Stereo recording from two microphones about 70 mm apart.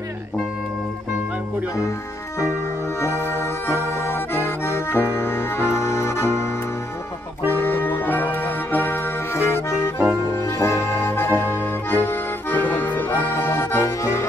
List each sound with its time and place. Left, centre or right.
3.0 s accordion: left
4.9 s music: left
10.4 s accordion: left